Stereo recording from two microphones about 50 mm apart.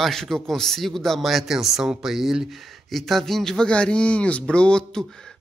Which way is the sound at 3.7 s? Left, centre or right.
Left.